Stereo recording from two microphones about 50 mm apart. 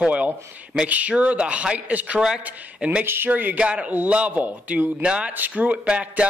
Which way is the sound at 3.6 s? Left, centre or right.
Right.